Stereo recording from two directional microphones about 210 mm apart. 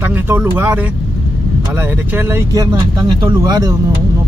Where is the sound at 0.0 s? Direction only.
10° right (ahead or behind).